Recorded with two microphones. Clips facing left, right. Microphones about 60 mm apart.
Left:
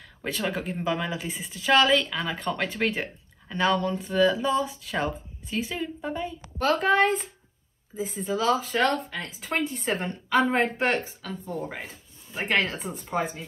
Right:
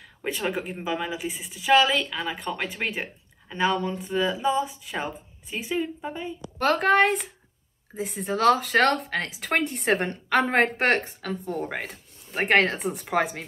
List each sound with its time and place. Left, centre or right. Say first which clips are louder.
0.2 s a woman's voice: right 1 dB; right
6.6 s a woman's voice: right 2 dB; right
13.1 s speech: right 3 dB; right